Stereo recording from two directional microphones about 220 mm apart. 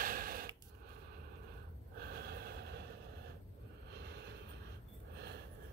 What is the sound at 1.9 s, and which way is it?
Snort, 45° right (ahead or behind).